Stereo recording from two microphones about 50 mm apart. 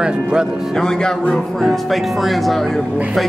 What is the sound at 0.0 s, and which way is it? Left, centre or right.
Speech, centre.